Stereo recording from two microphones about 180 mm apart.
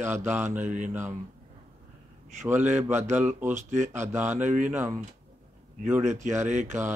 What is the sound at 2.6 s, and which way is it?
Speech, 40° right (ahead or behind).